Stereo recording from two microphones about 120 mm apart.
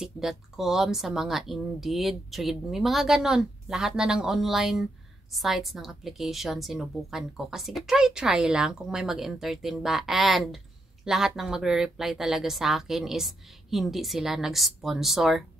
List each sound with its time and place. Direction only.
0.0 s a woman's voice: 5° right (ahead or behind)